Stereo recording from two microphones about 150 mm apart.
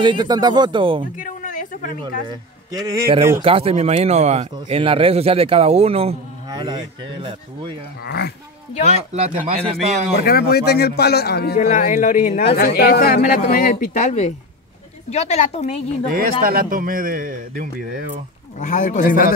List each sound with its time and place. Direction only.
0.0 s speech: 30° right (ahead or behind)
1.1 s a sound: 60° left (ahead or behind)
2.2 s a man's voice: 25° right (ahead or behind)
3.3 s speech: 40° right (ahead or behind)
6.5 s speech: 30° right (ahead or behind)
8.0 s a man's voice: 90° left
9.1 s speech: 50° right (ahead or behind)
10.2 s a man's voice: 90° left; by 12.4 s 60° left (ahead or behind)
12.5 s a woman's voice: 90° left; by 15.8 s 45° left (ahead or behind)
16.1 s speech: 80° right
18.6 s speech: 55° left (ahead or behind)